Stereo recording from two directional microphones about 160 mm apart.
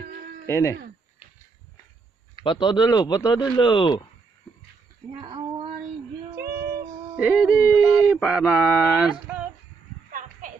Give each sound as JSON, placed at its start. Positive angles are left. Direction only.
{"t": 0.5, "sound": "speech", "side_deg": 20}
{"t": 2.4, "sound": "speech", "side_deg": 30}
{"t": 5.2, "sound": "female singing", "side_deg": -35}
{"t": 6.4, "sound": "female singing", "side_deg": -75}
{"t": 7.2, "sound": "a sound", "side_deg": -5}